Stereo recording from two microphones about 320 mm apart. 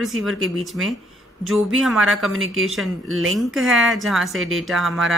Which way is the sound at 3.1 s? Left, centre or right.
Right.